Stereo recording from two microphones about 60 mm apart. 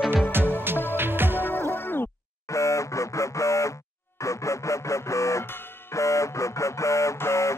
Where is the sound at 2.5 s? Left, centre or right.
Left.